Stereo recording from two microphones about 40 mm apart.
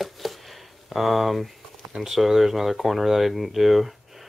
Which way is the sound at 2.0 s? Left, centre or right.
Centre.